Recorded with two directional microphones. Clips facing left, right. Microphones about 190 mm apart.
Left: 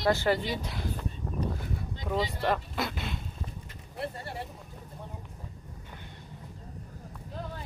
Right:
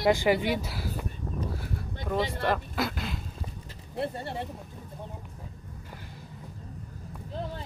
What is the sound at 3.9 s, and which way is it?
Speech, 25° right (ahead or behind).